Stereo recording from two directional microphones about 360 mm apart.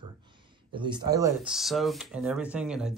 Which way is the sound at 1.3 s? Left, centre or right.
Centre.